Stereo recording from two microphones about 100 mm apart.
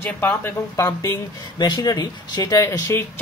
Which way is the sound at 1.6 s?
45° left (ahead or behind).